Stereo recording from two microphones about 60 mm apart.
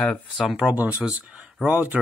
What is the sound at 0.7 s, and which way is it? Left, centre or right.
Speech, right.